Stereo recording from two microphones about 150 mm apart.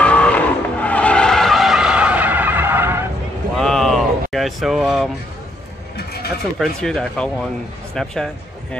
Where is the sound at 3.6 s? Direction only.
5° left (ahead or behind).